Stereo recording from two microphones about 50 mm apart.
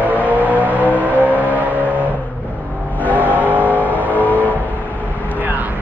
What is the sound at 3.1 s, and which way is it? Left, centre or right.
Vehicle, right.